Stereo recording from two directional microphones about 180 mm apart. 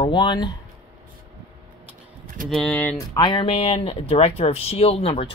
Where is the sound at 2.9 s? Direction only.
25° left (ahead or behind).